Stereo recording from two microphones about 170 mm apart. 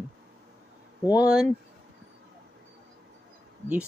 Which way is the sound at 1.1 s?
10° right (ahead or behind).